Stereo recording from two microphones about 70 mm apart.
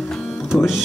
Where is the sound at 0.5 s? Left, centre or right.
Centre.